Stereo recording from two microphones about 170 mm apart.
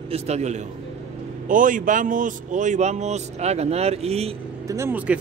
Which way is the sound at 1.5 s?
50° right (ahead or behind).